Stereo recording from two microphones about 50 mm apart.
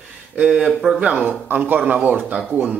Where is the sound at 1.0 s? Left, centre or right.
Right.